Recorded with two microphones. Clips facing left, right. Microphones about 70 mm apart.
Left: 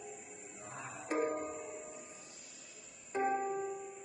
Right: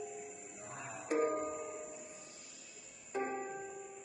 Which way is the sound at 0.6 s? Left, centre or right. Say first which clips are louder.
Even; left.